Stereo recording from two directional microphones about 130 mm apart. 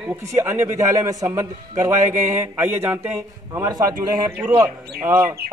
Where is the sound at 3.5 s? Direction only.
30° right (ahead or behind).